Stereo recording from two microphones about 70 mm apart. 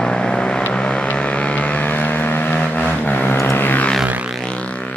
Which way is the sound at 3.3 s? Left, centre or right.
Left.